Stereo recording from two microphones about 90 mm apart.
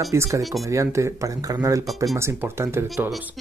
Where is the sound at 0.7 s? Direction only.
35° right (ahead or behind).